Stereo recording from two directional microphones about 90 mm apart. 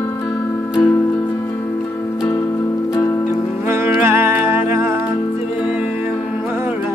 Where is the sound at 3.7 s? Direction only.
25° right (ahead or behind).